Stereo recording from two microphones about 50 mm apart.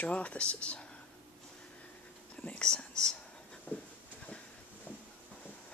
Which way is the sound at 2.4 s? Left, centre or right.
Centre.